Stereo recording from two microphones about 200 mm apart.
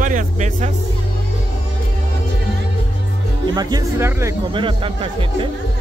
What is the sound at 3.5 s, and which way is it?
Speech, 15° right (ahead or behind).